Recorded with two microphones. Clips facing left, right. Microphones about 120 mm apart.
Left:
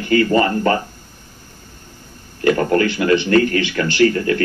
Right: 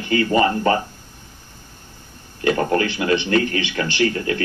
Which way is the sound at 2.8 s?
45° left (ahead or behind).